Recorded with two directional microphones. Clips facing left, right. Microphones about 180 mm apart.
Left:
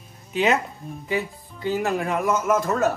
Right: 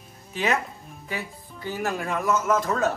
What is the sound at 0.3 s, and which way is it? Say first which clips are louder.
Speech: left 4 dB; 20° left (ahead or behind).